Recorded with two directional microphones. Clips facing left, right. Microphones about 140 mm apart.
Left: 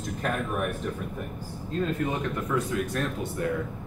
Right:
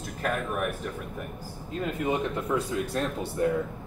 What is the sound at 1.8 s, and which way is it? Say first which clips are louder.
Speech: right 1 dB; 15° right (ahead or behind).